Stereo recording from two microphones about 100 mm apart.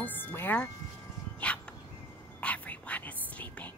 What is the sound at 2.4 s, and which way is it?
Whispering, 15° left (ahead or behind).